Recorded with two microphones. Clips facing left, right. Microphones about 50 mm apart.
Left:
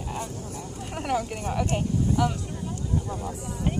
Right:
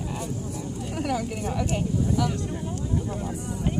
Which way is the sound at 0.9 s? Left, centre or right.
Left.